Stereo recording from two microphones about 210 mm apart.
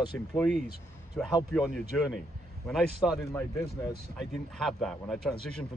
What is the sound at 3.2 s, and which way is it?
Speech, 10° left (ahead or behind).